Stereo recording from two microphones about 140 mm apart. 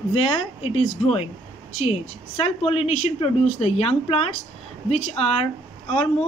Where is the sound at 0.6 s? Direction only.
45° left (ahead or behind).